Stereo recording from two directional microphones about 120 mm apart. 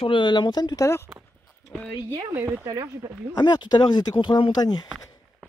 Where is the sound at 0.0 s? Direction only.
45° left (ahead or behind).